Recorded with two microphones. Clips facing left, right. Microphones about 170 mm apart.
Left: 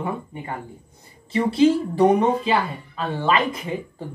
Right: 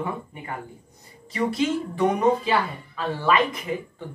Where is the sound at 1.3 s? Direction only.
30° left (ahead or behind).